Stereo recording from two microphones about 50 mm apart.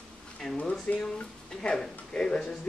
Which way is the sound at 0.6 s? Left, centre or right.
Left.